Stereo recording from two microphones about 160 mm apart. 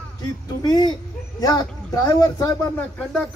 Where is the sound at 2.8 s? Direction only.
5° left (ahead or behind).